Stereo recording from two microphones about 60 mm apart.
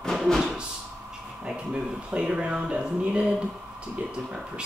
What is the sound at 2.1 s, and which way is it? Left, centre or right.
Speech, centre.